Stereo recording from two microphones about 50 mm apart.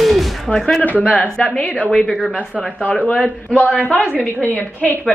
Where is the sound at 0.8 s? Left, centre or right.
Left.